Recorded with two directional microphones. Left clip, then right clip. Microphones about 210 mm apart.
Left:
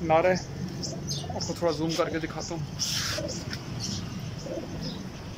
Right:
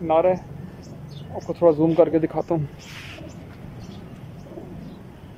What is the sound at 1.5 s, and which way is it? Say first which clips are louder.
Speech: right 11 dB; 25° right (ahead or behind).